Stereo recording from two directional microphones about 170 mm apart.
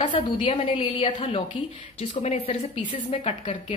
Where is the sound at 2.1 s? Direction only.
45° left (ahead or behind).